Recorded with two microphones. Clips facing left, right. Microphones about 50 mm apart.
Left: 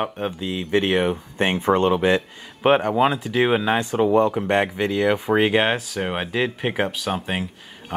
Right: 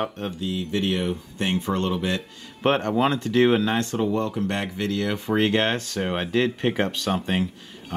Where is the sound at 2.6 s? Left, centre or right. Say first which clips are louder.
Left 4 dB; centre.